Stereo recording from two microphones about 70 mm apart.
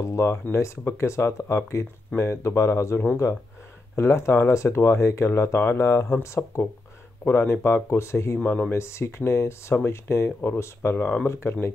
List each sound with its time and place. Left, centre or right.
0.0 s speech: left
7.2 s speech: left
8.4 s speech: centre
8.7 s speech: left
11.0 s speech: left
11.4 s speech: left